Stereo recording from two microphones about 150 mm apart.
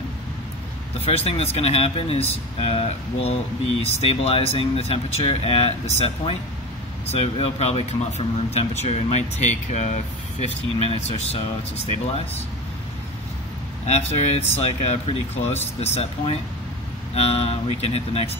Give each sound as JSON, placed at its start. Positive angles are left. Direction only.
{"t": 1.0, "sound": "speech", "side_deg": 40}
{"t": 13.8, "sound": "speech", "side_deg": 45}